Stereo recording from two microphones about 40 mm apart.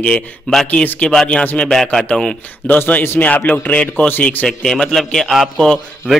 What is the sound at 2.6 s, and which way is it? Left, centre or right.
A man's voice, left.